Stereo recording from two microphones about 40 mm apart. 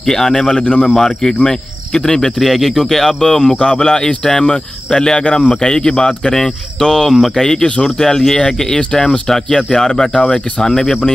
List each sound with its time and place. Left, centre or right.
0.0 s speech: centre
0.6 s speech: left
0.9 s speech: centre